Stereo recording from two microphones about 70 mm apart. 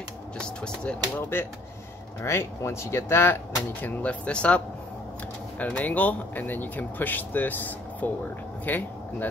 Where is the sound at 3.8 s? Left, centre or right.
Left.